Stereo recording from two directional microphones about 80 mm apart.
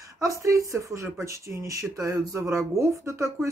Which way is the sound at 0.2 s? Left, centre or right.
Right.